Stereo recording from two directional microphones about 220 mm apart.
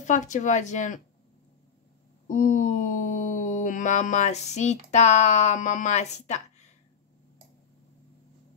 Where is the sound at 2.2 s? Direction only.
35° left (ahead or behind).